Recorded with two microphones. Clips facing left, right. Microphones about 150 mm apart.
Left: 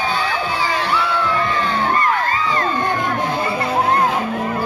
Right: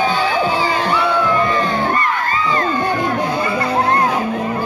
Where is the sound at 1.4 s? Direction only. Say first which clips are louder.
Right 3 dB; 45° right (ahead or behind).